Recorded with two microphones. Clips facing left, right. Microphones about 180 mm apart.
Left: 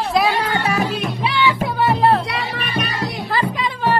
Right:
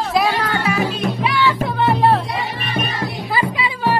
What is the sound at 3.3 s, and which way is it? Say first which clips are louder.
Music: right 1 dB; 10° right (ahead or behind).